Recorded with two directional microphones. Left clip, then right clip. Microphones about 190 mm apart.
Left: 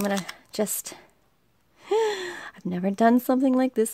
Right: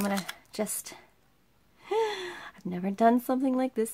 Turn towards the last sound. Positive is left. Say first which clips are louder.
# left 6 dB
turn(degrees=40)  # may be behind; listen again after turning